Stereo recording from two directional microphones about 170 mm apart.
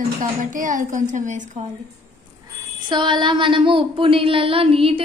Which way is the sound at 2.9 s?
25° right (ahead or behind).